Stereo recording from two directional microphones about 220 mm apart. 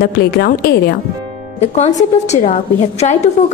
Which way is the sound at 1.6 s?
30° left (ahead or behind).